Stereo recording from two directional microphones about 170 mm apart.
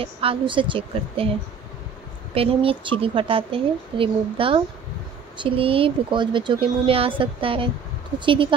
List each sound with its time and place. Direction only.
0.0 s speech: 35° right (ahead or behind)
2.3 s speech: 35° right (ahead or behind)